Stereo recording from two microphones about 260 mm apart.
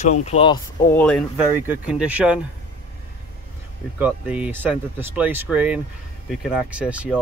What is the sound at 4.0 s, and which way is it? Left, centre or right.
Speech, centre.